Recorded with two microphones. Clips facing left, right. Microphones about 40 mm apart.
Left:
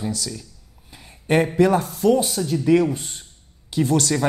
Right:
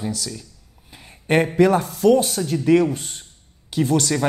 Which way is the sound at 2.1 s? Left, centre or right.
Centre.